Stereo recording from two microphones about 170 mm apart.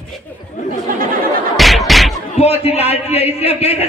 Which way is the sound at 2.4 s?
35° left (ahead or behind).